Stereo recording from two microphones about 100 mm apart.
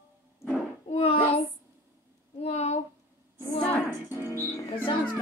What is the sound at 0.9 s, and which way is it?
Hands, 75° left (ahead or behind).